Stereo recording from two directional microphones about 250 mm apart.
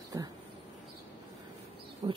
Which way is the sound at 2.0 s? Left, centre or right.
Right.